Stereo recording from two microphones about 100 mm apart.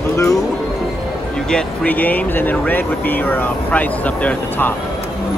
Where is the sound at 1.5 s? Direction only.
15° left (ahead or behind).